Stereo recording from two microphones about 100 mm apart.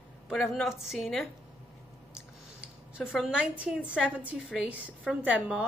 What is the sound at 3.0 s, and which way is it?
A woman's voice, 5° right (ahead or behind).